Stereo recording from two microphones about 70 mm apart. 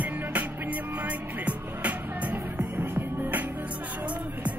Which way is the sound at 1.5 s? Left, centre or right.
Right.